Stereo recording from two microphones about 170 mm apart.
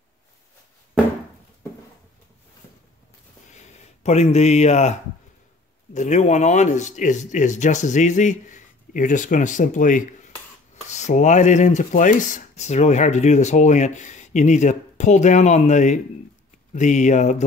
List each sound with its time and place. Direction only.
3.5 s speech: 40° left (ahead or behind)
5.9 s speech: 45° left (ahead or behind)